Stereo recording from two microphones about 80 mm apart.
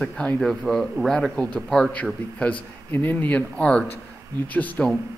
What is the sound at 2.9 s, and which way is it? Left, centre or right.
Speech, left.